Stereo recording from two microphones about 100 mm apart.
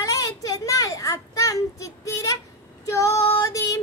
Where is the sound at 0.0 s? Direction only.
35° left (ahead or behind).